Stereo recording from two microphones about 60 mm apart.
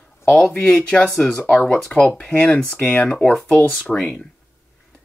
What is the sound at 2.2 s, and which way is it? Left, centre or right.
Speech, centre.